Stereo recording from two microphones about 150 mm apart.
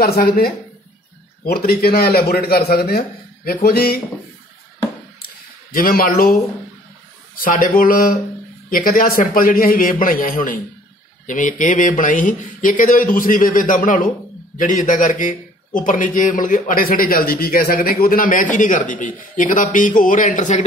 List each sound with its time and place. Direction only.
0.0 s a man's voice: 90° left
1.4 s a man's voice: 85° left
5.2 s a sound: 75° left (ahead or behind)
7.3 s a man's voice: 70° left (ahead or behind)